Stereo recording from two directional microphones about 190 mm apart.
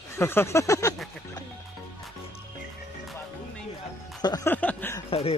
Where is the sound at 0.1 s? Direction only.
10° left (ahead or behind).